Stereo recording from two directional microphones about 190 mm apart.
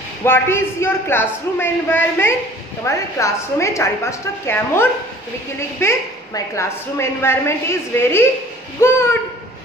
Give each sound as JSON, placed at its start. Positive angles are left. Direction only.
{"t": 0.2, "sound": "a woman's voice", "side_deg": 15}